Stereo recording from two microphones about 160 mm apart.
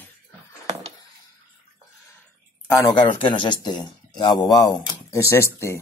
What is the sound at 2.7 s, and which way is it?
Speech, 15° left (ahead or behind).